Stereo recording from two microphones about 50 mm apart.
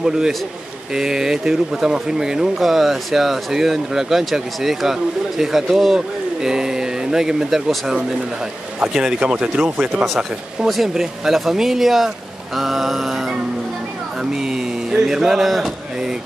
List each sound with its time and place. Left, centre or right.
0.0 s speech: centre
10.7 s speech: centre